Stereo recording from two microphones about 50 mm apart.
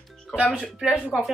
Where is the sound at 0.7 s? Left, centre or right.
Centre.